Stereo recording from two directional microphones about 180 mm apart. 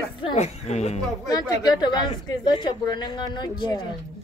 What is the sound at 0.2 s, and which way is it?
Speech, 35° left (ahead or behind).